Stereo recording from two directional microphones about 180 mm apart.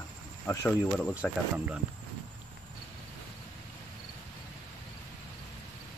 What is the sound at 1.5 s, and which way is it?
Speech, 10° right (ahead or behind).